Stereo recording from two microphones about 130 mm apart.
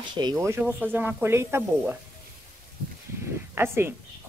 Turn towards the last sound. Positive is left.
turn(degrees=-20)  # may be behind; listen again after turning